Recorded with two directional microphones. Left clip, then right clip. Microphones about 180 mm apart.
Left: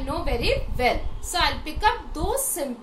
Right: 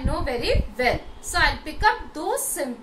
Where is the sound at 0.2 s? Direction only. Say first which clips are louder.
Even; 15° left (ahead or behind).